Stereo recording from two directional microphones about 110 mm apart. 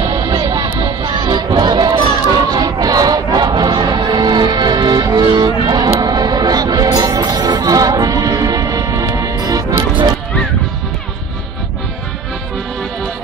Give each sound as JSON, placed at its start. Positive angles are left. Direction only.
{"t": 0.3, "sound": "music", "side_deg": -35}